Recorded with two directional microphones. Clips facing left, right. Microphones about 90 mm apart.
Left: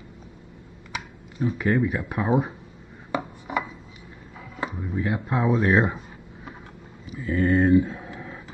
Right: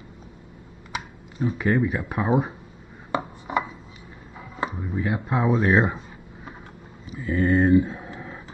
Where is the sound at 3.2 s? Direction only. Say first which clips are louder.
Right 2 dB; 20° right (ahead or behind).